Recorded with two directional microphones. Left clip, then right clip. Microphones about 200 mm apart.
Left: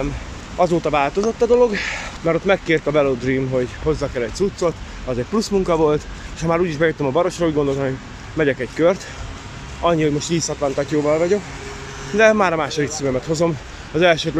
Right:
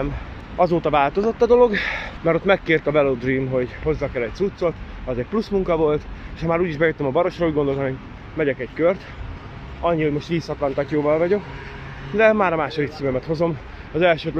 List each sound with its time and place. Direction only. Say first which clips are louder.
0.6 s speech: even; 20° left (ahead or behind)
8.4 s speech: left 3 dB; 35° left (ahead or behind)